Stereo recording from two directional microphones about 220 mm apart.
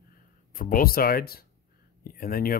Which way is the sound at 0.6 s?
40° left (ahead or behind).